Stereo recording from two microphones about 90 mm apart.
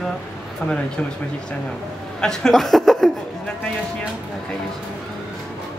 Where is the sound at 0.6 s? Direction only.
15° left (ahead or behind).